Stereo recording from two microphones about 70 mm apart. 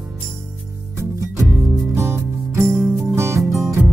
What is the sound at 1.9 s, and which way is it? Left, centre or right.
Music, right.